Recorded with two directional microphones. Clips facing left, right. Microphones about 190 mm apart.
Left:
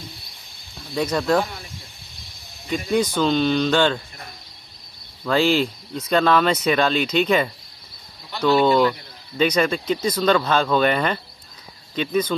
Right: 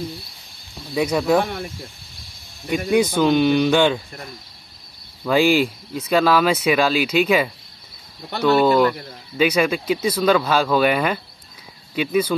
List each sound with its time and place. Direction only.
0.9 s speech: 10° right (ahead or behind)
1.4 s speech: 60° right (ahead or behind)
3.2 s speech: 10° right (ahead or behind)
5.2 s speech: 10° right (ahead or behind)